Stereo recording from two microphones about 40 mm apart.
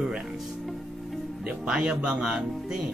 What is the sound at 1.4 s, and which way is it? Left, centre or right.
Speech, right.